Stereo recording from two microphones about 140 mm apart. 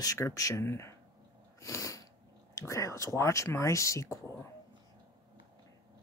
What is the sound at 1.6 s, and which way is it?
Sneeze, 20° left (ahead or behind).